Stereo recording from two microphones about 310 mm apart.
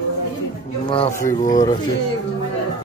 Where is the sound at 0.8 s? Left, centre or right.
Centre.